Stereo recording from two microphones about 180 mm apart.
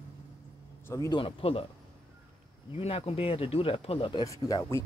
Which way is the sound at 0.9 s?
15° left (ahead or behind).